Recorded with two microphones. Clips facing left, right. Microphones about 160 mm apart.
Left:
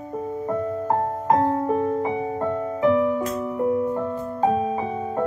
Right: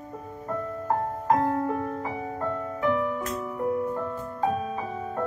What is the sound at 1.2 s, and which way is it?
Music, 25° left (ahead or behind).